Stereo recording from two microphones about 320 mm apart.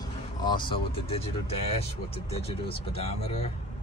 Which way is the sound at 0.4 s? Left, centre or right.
Centre.